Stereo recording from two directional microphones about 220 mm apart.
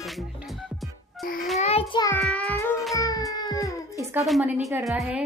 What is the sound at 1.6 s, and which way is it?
Child singing, 25° left (ahead or behind).